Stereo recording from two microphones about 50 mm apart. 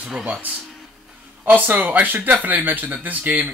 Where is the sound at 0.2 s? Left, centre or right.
Right.